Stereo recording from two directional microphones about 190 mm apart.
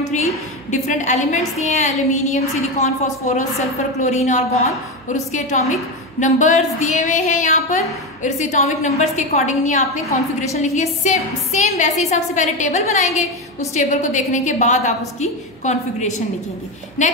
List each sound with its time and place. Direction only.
0.1 s a woman's voice: 40° left (ahead or behind)